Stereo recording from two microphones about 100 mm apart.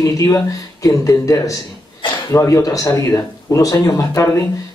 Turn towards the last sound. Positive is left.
turn(degrees=30)  # may be behind; listen again after turning